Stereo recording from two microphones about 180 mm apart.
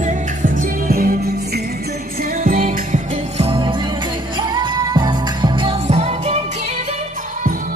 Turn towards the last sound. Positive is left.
turn(degrees=-40)  # may be behind; listen again after turning